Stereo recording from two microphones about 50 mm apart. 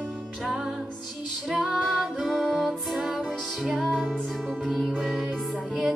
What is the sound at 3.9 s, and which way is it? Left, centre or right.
Music, centre.